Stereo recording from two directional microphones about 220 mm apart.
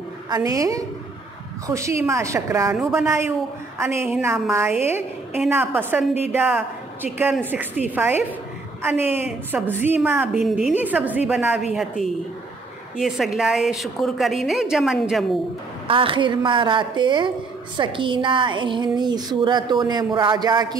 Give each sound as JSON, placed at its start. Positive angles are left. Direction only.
{"t": 0.3, "sound": "a woman's voice", "side_deg": -15}
{"t": 15.9, "sound": "a woman's voice", "side_deg": -25}